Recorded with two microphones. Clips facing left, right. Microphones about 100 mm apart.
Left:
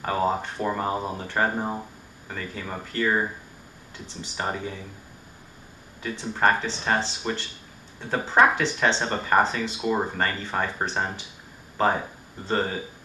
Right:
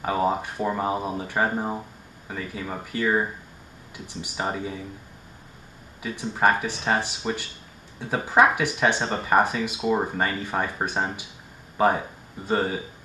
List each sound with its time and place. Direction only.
0.0 s speech: 10° right (ahead or behind)
6.0 s speech: 10° right (ahead or behind)